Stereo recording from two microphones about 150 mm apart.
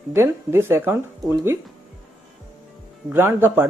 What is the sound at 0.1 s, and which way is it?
Speech, 15° right (ahead or behind).